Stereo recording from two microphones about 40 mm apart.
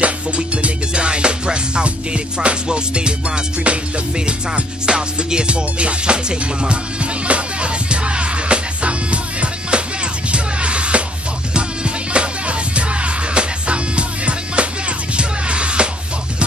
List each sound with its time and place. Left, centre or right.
0.4 s music: right
4.8 s music: centre